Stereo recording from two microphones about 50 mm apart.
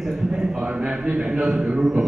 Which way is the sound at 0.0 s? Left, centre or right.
Centre.